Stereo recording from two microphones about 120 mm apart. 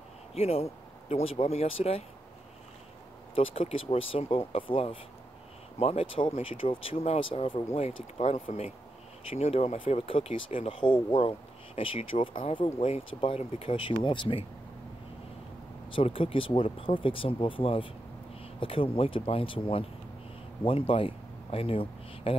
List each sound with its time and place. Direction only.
0.3 s speech: 60° left (ahead or behind)
3.3 s speech: 55° left (ahead or behind); by 8.7 s 75° left (ahead or behind)
9.3 s speech: 60° left (ahead or behind)
15.9 s speech: 50° left (ahead or behind)